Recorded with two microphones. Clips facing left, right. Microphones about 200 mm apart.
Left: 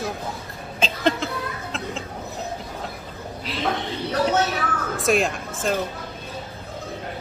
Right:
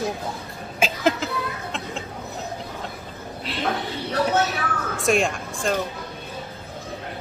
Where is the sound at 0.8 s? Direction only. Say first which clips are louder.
Right 1 dB; 5° right (ahead or behind).